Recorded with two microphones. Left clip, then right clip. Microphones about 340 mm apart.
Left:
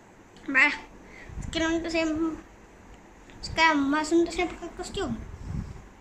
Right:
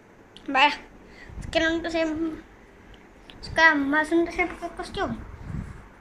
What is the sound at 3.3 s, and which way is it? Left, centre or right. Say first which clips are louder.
A woman's voice: right 4 dB; centre.